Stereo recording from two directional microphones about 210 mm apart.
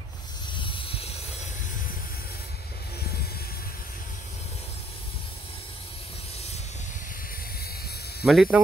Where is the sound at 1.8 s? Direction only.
45° left (ahead or behind).